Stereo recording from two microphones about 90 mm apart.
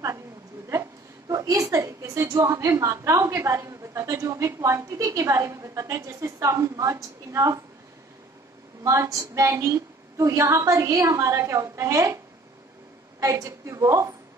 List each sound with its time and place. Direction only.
1.3 s a woman's voice: 40° right (ahead or behind)
8.8 s a woman's voice: 40° right (ahead or behind)
13.2 s a woman's voice: 35° right (ahead or behind)